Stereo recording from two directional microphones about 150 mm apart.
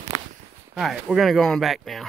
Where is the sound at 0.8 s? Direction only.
Centre (ahead or behind).